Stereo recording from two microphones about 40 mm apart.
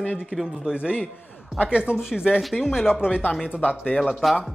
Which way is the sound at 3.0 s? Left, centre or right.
Left.